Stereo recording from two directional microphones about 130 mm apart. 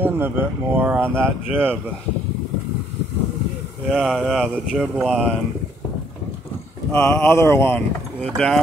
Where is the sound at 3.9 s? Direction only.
Centre (ahead or behind).